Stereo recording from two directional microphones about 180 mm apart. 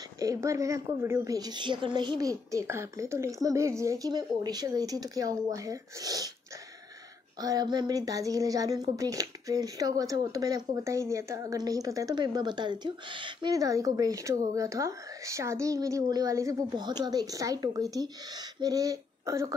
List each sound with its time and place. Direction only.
0.2 s speech: 15° right (ahead or behind)
7.3 s speech: 20° right (ahead or behind)